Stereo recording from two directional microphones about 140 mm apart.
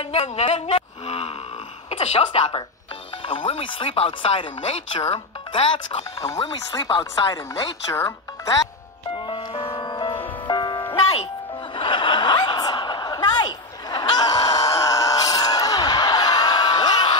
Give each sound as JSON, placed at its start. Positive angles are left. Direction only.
{"t": 0.0, "sound": "speech", "side_deg": 45}
{"t": 6.1, "sound": "speech", "side_deg": 20}
{"t": 6.8, "sound": "speech", "side_deg": 35}
{"t": 7.9, "sound": "speech", "side_deg": 20}
{"t": 9.2, "sound": "music", "side_deg": 40}
{"t": 11.7, "sound": "chuckle", "side_deg": 35}